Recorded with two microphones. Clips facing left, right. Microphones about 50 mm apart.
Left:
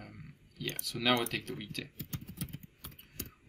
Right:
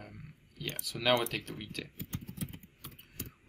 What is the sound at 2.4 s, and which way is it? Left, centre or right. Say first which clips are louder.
Typing: right 1 dB; right.